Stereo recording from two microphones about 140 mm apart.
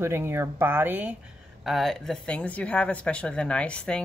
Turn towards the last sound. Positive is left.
turn(degrees=10)  # may be behind; listen again after turning